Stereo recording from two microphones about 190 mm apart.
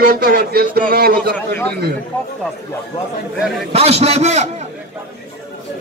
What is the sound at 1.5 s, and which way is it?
Speech, 10° left (ahead or behind).